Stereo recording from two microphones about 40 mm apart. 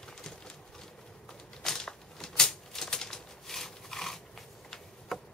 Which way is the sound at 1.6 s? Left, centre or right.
Centre.